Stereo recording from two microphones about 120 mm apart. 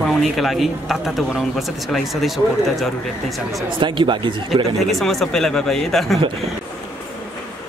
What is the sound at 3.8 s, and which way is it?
Speech, 45° right (ahead or behind).